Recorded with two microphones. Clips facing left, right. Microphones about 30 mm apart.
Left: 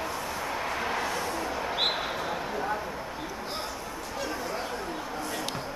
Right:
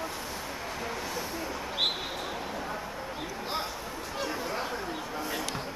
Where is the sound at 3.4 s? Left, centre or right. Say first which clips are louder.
Right 1 dB; centre.